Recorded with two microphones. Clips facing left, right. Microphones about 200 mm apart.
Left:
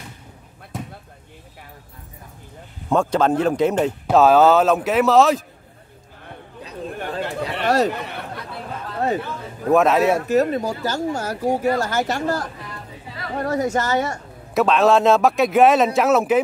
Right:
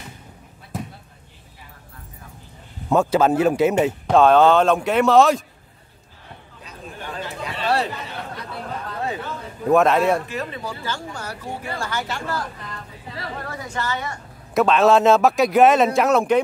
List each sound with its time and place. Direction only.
2.9 s speech: 5° right (ahead or behind)
4.1 s a man's voice: 5° left (ahead or behind)
7.0 s chatter: 60° left (ahead or behind)
9.7 s a man's voice: centre (ahead or behind)
10.2 s speech: 45° left (ahead or behind)
14.5 s a man's voice: centre (ahead or behind)